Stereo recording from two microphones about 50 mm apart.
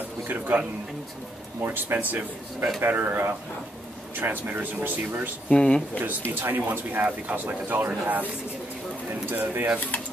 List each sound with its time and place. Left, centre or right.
0.3 s speech: right
1.6 s speech: right
5.5 s speech: centre
6.4 s speech: right
9.3 s speech: right